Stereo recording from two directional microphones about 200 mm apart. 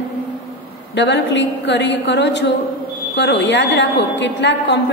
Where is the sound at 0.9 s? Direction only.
60° left (ahead or behind).